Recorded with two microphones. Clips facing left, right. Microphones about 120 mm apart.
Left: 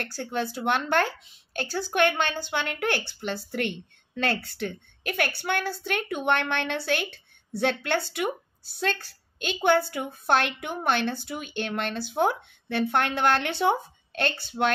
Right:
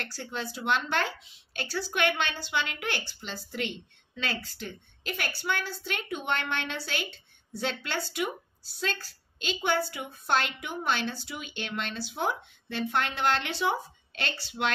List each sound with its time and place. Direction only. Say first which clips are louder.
0.0 s speech: left 6 dB; 55° left (ahead or behind)